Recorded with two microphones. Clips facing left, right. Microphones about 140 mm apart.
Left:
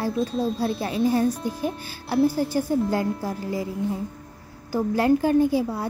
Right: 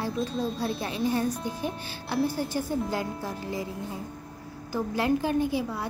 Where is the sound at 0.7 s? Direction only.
35° left (ahead or behind).